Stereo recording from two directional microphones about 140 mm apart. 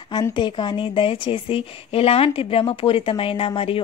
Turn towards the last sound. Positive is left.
turn(degrees=40)  # may be behind; listen again after turning